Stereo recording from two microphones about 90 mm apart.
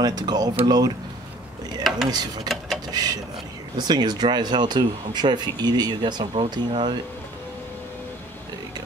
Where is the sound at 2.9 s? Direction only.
45° right (ahead or behind).